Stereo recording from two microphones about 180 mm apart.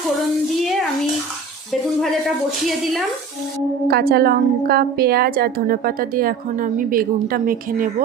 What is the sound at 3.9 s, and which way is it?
A woman's voice, 55° right (ahead or behind).